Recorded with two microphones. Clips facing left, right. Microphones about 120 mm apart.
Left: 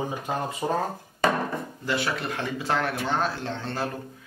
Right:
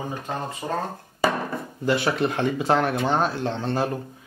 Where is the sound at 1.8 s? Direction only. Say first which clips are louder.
Right 7 dB; 25° right (ahead or behind).